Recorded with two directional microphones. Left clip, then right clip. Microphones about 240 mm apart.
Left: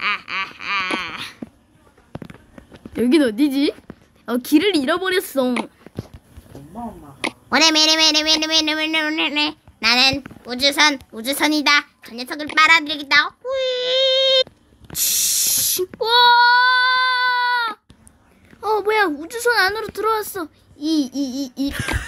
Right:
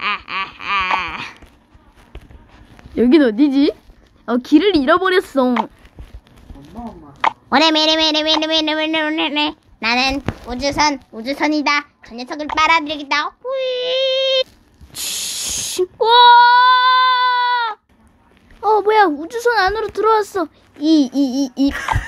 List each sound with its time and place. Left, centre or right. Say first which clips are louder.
0.0 s a sound: right 1 dB; centre
3.0 s a child's voice: right 4 dB; centre
7.2 s speech: right 3 dB; centre
14.9 s child singing: left 3 dB; centre
18.6 s a child's voice: right 5 dB; centre
21.7 s a sound: right 4 dB; left